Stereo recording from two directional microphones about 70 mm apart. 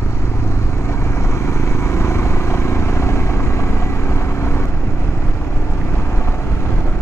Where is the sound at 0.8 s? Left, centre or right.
Left.